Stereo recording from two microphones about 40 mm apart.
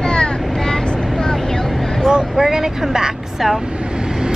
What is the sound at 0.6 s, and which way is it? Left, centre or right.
Vehicle, centre.